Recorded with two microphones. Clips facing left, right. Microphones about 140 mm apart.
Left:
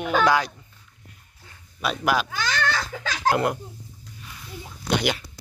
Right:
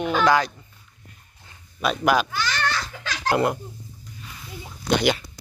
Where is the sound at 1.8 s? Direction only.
5° left (ahead or behind).